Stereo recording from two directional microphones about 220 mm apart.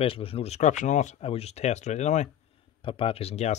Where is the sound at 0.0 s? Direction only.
25° left (ahead or behind).